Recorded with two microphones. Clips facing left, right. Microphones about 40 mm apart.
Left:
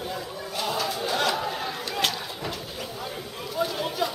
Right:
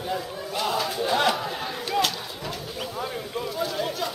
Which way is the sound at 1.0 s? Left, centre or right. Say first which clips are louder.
Right 4 dB; centre.